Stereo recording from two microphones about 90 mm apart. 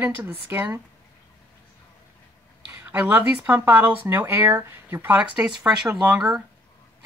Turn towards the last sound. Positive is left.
turn(degrees=-5)  # may be behind; listen again after turning